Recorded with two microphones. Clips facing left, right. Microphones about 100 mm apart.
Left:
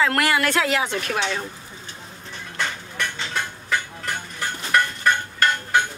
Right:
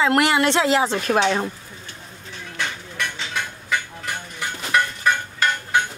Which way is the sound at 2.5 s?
Centre (ahead or behind).